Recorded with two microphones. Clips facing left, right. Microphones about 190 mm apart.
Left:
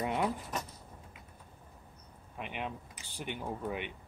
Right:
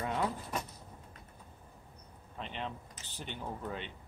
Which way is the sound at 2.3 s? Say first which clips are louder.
Left 1 dB; 10° left (ahead or behind).